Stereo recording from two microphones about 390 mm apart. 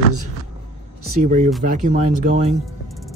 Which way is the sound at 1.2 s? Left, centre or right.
Centre.